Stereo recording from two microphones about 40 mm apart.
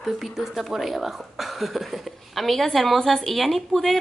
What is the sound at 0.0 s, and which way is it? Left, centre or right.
A woman's voice, centre.